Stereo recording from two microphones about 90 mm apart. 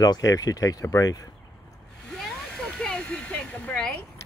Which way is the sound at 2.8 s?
10° left (ahead or behind).